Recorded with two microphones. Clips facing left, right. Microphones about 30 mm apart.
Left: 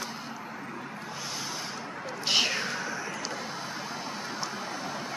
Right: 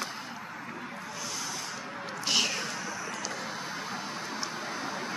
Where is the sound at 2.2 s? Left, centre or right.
Centre.